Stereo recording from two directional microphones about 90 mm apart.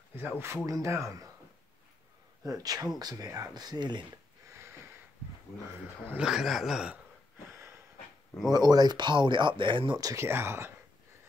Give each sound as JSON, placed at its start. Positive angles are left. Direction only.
{"t": 0.1, "sound": "speech", "side_deg": -25}
{"t": 2.4, "sound": "speech", "side_deg": -45}
{"t": 4.5, "sound": "sniff", "side_deg": -30}
{"t": 6.1, "sound": "a man's voice", "side_deg": -5}
{"t": 7.4, "sound": "a sound", "side_deg": -25}
{"t": 8.5, "sound": "speech", "side_deg": -50}
{"t": 9.9, "sound": "speech", "side_deg": -40}
{"t": 10.2, "sound": "speech", "side_deg": -25}